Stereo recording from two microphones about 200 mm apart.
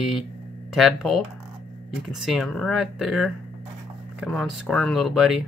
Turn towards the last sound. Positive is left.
turn(degrees=0)  # may be behind; listen again after turning